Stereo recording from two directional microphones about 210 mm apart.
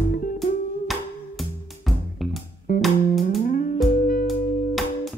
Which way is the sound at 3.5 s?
45° left (ahead or behind).